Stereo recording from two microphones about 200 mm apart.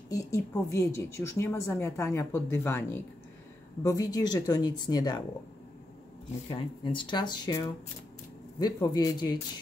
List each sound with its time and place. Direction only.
0.1 s a woman's voice: 15° left (ahead or behind)
6.5 s speech: 25° left (ahead or behind)